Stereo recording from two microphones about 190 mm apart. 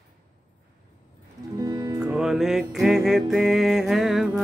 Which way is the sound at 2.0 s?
5° right (ahead or behind).